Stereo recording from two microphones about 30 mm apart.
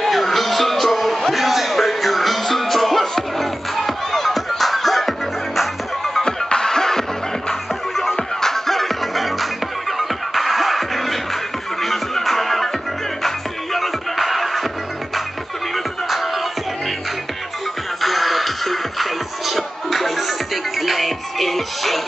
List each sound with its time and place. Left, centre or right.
0.0 s music: centre
6.2 s music: left; by 12.6 s centre
13.7 s music: centre
18.0 s music: centre